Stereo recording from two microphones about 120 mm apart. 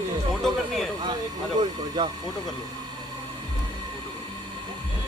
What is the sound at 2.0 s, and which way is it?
Speech, 40° right (ahead or behind).